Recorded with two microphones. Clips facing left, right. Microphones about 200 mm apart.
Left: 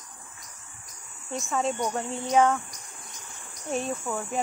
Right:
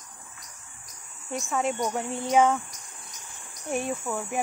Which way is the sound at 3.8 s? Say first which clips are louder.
Right 1 dB; 25° left (ahead or behind).